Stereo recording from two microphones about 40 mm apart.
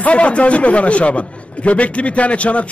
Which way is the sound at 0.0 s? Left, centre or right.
Left.